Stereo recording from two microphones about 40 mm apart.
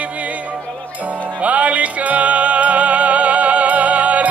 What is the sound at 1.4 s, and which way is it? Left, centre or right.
Music, right.